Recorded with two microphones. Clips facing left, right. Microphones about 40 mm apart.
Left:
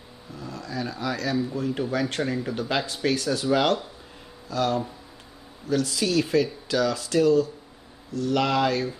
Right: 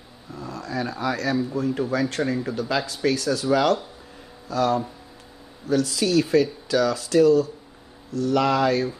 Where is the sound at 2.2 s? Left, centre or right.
Centre.